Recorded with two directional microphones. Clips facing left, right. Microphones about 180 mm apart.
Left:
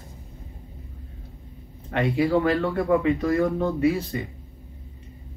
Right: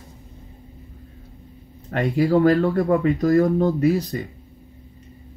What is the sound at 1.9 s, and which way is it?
Speech, 40° right (ahead or behind).